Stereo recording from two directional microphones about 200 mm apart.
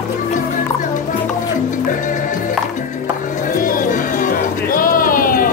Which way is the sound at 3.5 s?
40° left (ahead or behind).